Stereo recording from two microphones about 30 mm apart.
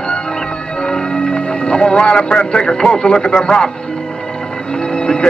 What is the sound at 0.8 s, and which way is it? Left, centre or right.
Music, left.